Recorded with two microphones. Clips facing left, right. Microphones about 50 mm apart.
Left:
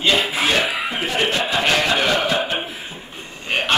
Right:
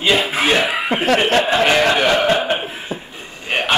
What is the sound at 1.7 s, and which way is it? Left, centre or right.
Music, centre.